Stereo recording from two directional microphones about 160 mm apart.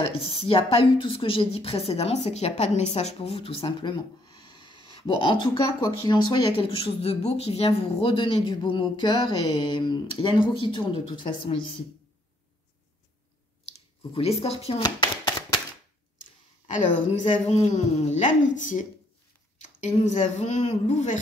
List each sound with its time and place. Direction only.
0.0 s speech: 35° left (ahead or behind)
14.1 s speech: 40° left (ahead or behind)
14.8 s a sound: 25° left (ahead or behind)
17.1 s a woman's voice: 45° left (ahead or behind)